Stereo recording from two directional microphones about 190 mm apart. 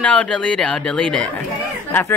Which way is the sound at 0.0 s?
5° left (ahead or behind).